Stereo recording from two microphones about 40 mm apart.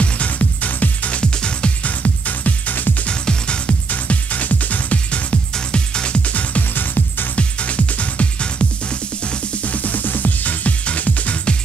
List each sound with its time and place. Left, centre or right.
0.0 s music: left
1.2 s music: left
1.9 s music: left
3.1 s music: left
3.9 s music: left
6.7 s music: left
7.3 s music: left
9.7 s music: left